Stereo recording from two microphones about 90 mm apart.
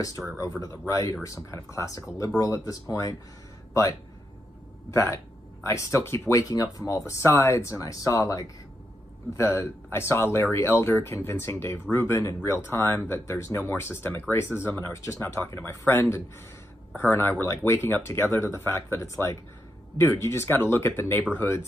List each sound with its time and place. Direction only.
0.4 s speech: 40° left (ahead or behind)
4.9 s speech: 35° left (ahead or behind)
9.4 s speech: 25° left (ahead or behind)